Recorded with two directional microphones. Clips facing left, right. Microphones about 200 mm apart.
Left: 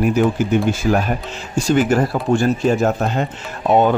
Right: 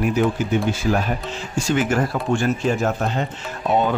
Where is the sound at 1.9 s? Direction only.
35° left (ahead or behind).